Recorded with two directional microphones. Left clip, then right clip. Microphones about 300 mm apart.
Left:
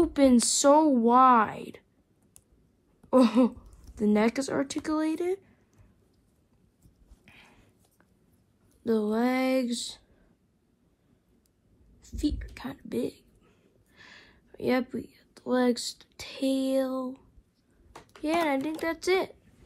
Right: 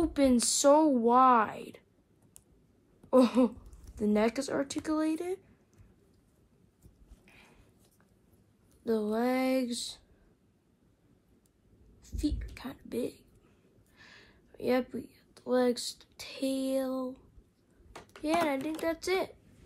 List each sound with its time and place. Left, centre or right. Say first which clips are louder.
0.0 s a woman's voice: left 5 dB; left
3.1 s a woman's voice: left 2 dB; left
7.2 s a sound: left 4 dB; left
8.8 s a woman's voice: left 3 dB; left
12.0 s whispering: left 4 dB; left
13.9 s a sound: left 4 dB; left
15.1 s speech: left 1 dB; left
17.9 s a sound: even; centre
18.2 s a woman's voice: left 3 dB; left